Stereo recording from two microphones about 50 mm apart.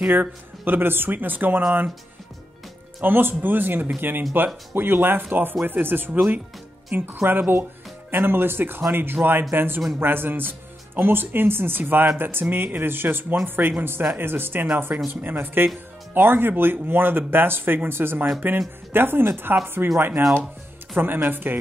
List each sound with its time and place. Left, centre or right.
0.1 s speech: right
3.0 s speech: right